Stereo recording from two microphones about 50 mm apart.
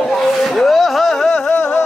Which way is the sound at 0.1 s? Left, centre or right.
Centre.